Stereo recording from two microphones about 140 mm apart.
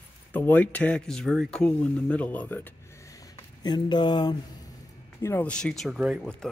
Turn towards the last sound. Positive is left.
turn(degrees=-5)  # may be behind; listen again after turning